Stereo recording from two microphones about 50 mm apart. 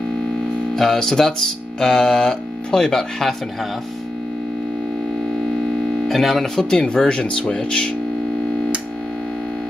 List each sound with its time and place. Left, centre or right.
0.7 s speech: centre
6.0 s speech: centre